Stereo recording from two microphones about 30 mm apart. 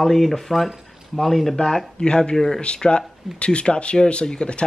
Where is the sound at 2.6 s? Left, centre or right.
Left.